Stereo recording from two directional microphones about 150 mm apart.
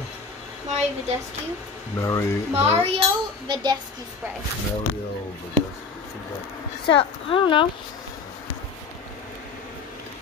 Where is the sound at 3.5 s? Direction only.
30° right (ahead or behind).